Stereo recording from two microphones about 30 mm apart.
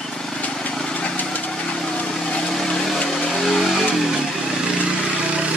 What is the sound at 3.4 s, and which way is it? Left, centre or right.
Vehicle, centre.